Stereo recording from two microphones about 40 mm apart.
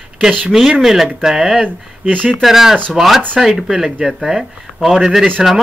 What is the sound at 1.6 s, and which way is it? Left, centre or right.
Speech, right.